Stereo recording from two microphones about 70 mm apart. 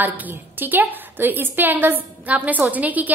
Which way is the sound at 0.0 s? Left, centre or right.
Right.